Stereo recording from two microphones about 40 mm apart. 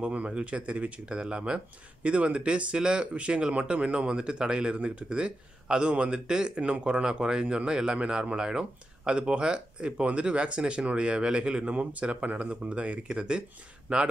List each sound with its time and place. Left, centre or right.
0.0 s speech: right